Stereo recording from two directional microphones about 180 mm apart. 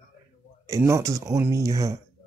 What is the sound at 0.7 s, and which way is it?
Speech, 15° right (ahead or behind).